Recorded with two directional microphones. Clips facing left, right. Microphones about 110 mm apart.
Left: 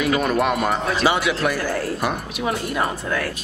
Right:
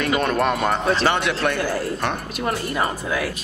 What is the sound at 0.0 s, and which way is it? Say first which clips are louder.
Speech: left 1 dB; 5° left (ahead or behind).